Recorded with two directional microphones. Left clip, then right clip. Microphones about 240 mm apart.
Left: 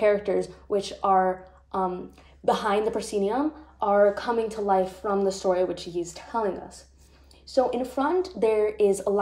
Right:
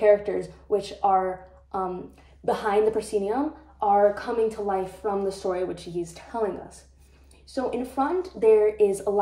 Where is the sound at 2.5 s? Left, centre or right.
Left.